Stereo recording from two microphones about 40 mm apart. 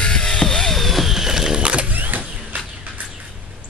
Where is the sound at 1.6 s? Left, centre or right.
Right.